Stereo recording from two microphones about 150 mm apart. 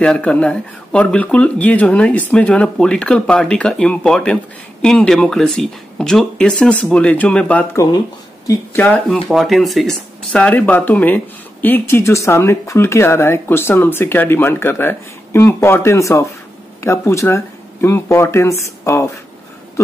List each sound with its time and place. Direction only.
0.0 s speech: 5° left (ahead or behind)
7.7 s speech: 20° left (ahead or behind)
8.8 s speech: 5° left (ahead or behind)